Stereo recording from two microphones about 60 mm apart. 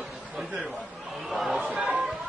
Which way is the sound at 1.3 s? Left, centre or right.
Centre.